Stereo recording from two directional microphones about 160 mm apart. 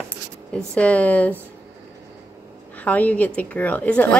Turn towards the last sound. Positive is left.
turn(degrees=10)  # may be behind; listen again after turning